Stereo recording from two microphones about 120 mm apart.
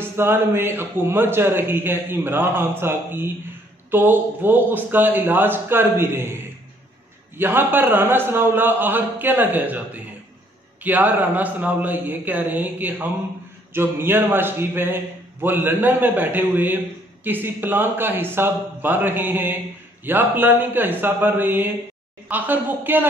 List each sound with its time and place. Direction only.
0.0 s a man's voice: 20° right (ahead or behind)